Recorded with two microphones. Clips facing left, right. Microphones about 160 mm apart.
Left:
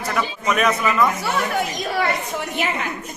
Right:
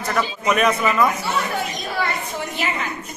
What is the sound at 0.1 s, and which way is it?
A man's voice, centre (ahead or behind).